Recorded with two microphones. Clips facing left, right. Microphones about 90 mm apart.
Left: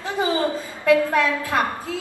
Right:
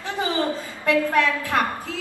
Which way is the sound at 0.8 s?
20° left (ahead or behind).